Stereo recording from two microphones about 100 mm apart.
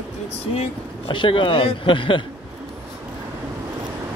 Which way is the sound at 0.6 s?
60° left (ahead or behind).